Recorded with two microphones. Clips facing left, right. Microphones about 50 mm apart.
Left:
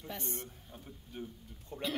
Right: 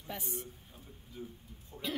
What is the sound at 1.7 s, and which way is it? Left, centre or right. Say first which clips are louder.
Speech: left 5 dB; left.